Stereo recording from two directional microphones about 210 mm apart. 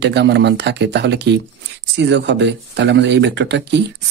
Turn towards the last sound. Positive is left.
turn(degrees=-55)  # may be behind; listen again after turning